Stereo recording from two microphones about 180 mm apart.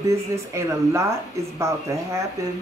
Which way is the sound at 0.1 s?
15° right (ahead or behind).